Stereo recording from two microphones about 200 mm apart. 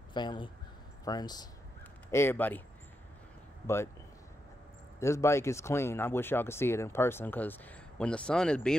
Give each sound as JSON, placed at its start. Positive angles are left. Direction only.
{"t": 0.1, "sound": "speech", "side_deg": 25}
{"t": 3.6, "sound": "speech", "side_deg": 15}
{"t": 5.0, "sound": "speech", "side_deg": 15}